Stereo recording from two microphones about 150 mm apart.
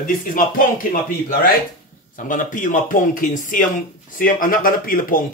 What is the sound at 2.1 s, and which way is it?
A man's voice, 60° left (ahead or behind).